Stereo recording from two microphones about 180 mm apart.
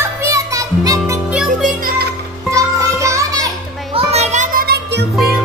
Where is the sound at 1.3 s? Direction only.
5° right (ahead or behind).